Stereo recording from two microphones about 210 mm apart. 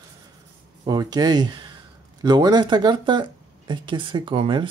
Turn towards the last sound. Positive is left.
turn(degrees=-25)  # may be behind; listen again after turning